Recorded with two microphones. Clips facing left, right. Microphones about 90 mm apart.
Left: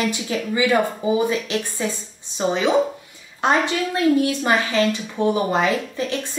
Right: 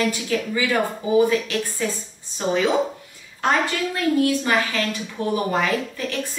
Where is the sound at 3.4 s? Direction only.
20° left (ahead or behind).